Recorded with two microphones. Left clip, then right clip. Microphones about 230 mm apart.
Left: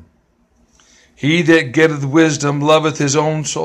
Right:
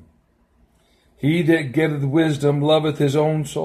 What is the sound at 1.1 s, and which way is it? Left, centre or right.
Speech, centre.